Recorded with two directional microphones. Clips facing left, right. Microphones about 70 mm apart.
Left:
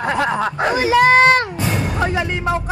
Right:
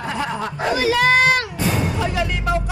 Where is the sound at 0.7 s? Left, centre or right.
Left.